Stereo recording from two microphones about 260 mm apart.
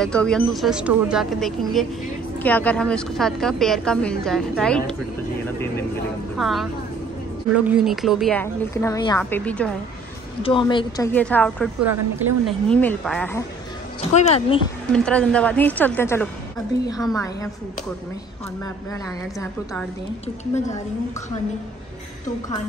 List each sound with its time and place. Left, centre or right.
0.0 s a woman's voice: centre
6.3 s a woman's voice: centre
10.4 s a woman's voice: centre
11.1 s a woman's voice: centre
14.1 s a woman's voice: left
14.9 s a woman's voice: centre